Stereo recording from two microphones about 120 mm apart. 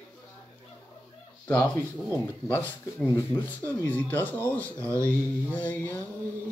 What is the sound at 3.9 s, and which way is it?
Speech, 15° left (ahead or behind).